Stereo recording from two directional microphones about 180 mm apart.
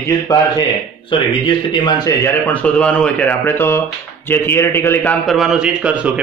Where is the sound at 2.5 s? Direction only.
5° left (ahead or behind).